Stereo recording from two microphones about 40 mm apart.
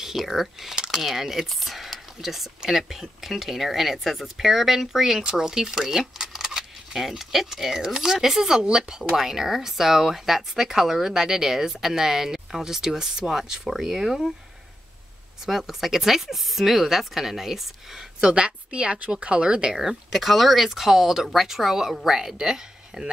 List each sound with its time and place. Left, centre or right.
0.0 s a woman's voice: centre
15.4 s speech: centre
18.2 s a woman's voice: right
19.7 s speech: centre